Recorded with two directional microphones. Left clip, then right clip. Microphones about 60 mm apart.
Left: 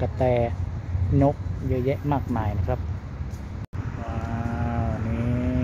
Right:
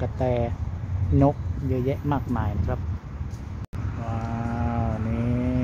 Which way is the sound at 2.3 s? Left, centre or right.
Centre.